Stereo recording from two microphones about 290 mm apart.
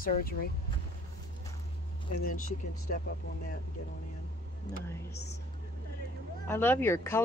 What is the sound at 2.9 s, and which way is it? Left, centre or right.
Speech, left.